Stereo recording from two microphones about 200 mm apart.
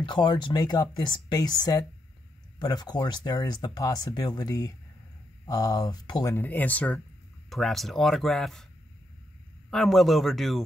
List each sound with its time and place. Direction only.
0.0 s speech: 25° left (ahead or behind); by 8.6 s centre (ahead or behind)
9.7 s speech: centre (ahead or behind)